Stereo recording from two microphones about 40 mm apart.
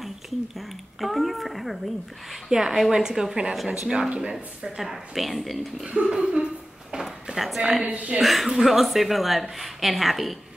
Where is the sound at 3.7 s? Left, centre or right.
Right.